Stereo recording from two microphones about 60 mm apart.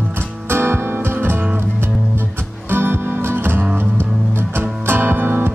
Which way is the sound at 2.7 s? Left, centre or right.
Right.